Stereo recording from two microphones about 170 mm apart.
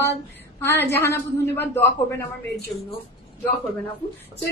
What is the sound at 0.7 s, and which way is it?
A woman's voice, 15° left (ahead or behind).